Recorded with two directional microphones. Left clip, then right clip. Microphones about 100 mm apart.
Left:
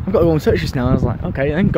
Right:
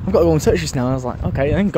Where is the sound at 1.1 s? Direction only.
40° left (ahead or behind).